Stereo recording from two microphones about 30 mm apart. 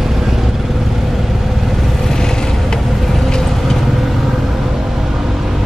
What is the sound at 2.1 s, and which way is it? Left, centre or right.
Vehicle, left.